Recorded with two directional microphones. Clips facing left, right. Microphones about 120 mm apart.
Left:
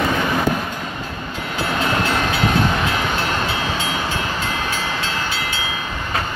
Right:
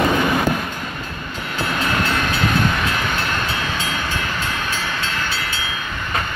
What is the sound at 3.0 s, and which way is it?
Train, 30° left (ahead or behind).